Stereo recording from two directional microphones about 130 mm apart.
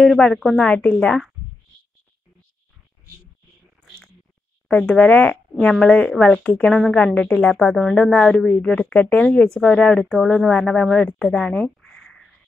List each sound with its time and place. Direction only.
0.0 s a woman's voice: 5° left (ahead or behind)
4.6 s speech: 10° left (ahead or behind)